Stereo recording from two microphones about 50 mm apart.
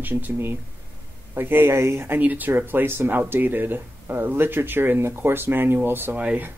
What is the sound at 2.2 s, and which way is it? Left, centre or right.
Speech, right.